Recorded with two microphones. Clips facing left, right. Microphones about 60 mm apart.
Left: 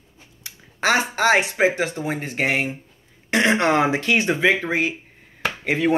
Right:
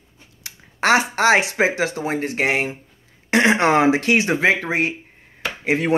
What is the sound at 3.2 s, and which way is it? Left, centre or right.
Speech, right.